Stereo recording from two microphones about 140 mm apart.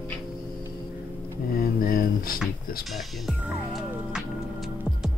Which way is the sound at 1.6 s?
90° left.